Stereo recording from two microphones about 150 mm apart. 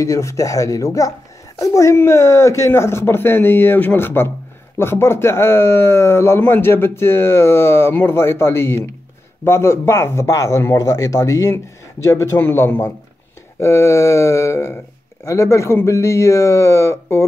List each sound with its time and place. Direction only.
0.0 s speech: 20° left (ahead or behind)